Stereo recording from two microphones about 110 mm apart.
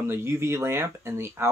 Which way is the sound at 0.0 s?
20° right (ahead or behind).